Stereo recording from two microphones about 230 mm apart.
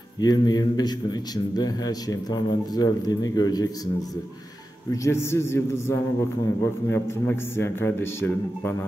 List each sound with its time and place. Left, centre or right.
0.2 s a man's voice: centre
4.9 s a man's voice: centre